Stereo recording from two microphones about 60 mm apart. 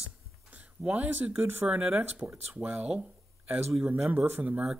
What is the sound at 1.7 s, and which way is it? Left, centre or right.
Speech, right.